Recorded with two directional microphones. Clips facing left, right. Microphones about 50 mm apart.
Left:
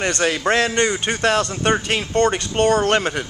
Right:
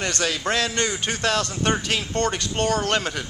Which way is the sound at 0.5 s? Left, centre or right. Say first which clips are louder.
Left 6 dB; left.